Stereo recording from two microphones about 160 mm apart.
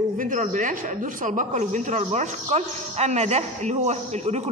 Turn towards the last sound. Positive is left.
turn(degrees=-45)  # may be behind; listen again after turning